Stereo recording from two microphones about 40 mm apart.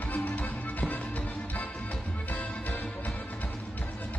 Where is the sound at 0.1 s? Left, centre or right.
Left.